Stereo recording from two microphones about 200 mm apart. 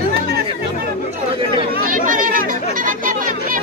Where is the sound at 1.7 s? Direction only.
45° right (ahead or behind).